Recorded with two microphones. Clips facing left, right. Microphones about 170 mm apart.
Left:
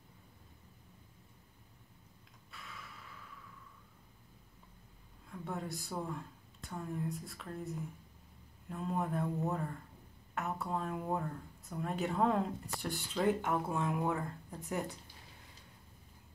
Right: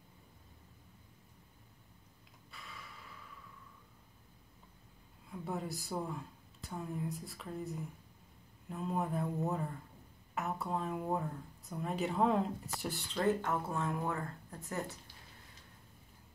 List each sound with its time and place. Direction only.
2.5 s a sound: centre (ahead or behind)
5.3 s speech: 5° right (ahead or behind)
13.2 s speech: 15° left (ahead or behind)